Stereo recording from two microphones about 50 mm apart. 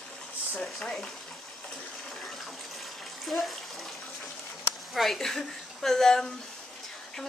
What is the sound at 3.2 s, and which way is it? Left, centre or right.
Speech, centre.